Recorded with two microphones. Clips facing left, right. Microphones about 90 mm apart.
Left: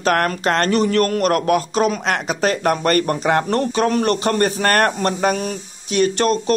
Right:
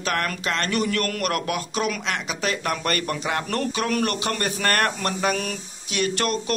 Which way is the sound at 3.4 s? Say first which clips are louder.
Left 7 dB; 30° left (ahead or behind).